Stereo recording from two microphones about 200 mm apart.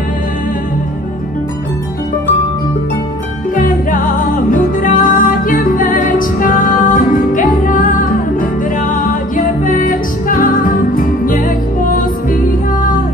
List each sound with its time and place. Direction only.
3.5 s music: 40° left (ahead or behind)
9.7 s music: 45° left (ahead or behind)